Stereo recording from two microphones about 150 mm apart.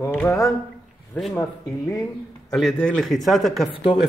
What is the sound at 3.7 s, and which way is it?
Speech, 35° left (ahead or behind).